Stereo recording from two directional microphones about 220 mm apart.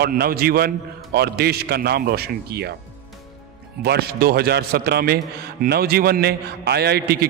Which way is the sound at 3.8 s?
45° right (ahead or behind).